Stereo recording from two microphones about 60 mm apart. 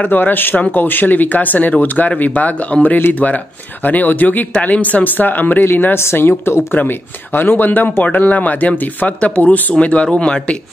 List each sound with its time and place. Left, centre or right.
0.0 s a woman's voice: left
5.9 s a woman's voice: left; by 10.4 s centre